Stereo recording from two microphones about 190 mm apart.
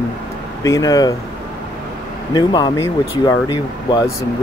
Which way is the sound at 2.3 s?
20° left (ahead or behind).